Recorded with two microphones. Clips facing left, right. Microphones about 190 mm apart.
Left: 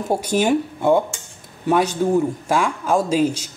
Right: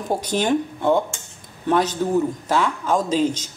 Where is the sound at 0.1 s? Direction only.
10° left (ahead or behind).